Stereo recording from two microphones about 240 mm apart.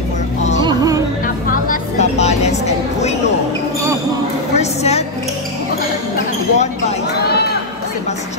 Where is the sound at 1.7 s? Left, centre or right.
Left.